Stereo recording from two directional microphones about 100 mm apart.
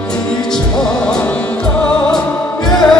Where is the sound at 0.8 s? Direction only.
5° left (ahead or behind).